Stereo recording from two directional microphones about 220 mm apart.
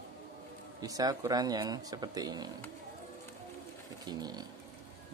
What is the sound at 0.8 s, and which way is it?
Speech, 15° right (ahead or behind).